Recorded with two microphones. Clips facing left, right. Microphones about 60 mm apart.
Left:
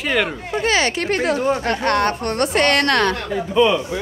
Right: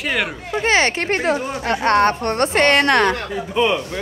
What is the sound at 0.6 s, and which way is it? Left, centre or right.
A woman's voice, right.